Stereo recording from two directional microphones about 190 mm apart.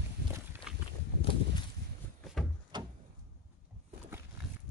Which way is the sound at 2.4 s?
Centre (ahead or behind).